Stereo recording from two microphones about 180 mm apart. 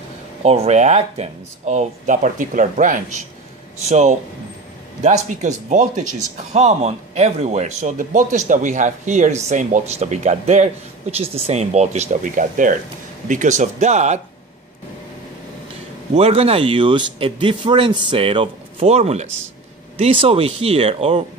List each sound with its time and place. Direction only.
0.4 s speech: 35° right (ahead or behind)
5.3 s speech: 45° right (ahead or behind)
16.2 s speech: 35° right (ahead or behind)